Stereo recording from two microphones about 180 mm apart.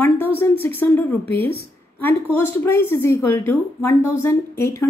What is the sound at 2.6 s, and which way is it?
A woman's voice, 10° left (ahead or behind).